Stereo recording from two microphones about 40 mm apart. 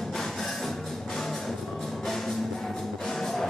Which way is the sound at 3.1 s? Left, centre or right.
Centre.